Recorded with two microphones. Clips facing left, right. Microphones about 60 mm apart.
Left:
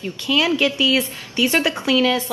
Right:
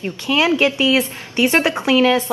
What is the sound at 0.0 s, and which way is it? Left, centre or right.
A woman's voice, right.